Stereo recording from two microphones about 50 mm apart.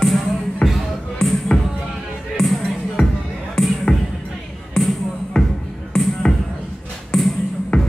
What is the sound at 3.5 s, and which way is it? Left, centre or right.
Music, centre.